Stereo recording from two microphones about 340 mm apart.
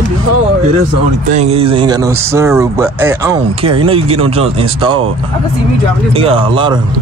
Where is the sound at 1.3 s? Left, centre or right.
Centre.